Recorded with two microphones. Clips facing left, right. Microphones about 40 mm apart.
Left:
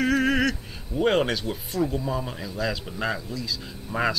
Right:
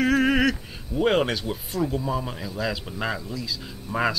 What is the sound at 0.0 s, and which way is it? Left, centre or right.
Speech, centre.